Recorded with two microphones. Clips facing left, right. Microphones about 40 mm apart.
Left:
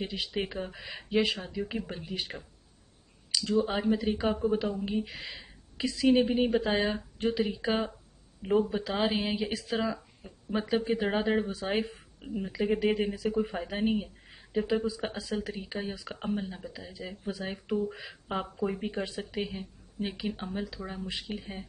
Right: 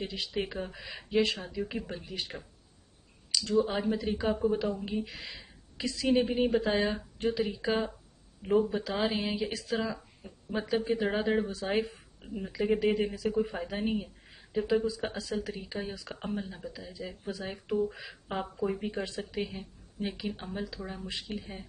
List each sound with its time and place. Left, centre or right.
0.0 s speech: centre
3.3 s clicking: centre
3.6 s speech: centre
5.3 s a sound: centre
6.3 s speech: centre